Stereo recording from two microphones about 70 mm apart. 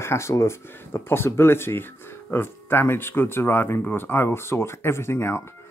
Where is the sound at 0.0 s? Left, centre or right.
Left.